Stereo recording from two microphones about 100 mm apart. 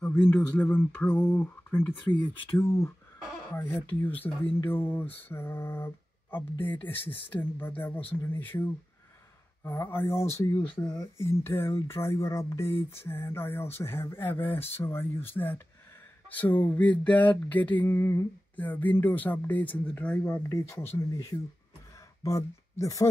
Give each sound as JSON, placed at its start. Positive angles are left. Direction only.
{"t": 0.0, "sound": "speech", "side_deg": 15}
{"t": 16.3, "sound": "a sound", "side_deg": 15}
{"t": 20.4, "sound": "speech", "side_deg": 30}